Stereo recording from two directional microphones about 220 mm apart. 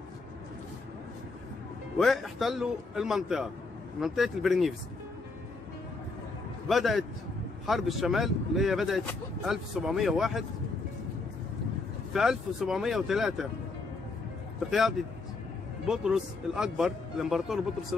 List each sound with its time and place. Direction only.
2.0 s speech: centre (ahead or behind)
6.7 s speech: centre (ahead or behind)
12.1 s speech: centre (ahead or behind)
14.7 s speech: centre (ahead or behind)